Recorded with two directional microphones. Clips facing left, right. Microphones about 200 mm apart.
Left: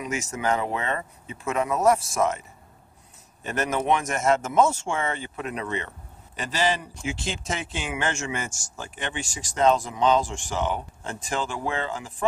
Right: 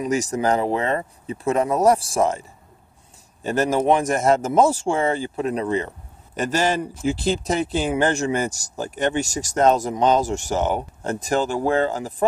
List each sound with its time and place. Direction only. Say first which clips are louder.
0.0 s speech: right 7 dB; 35° right (ahead or behind)
3.4 s speech: right 6 dB; 35° right (ahead or behind)
6.3 s a man's voice: right 5 dB; 45° right (ahead or behind)
7.0 s speech: right 9 dB; 35° right (ahead or behind)